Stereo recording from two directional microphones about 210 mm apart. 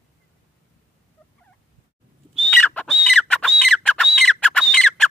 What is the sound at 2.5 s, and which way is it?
Bird, 5° left (ahead or behind).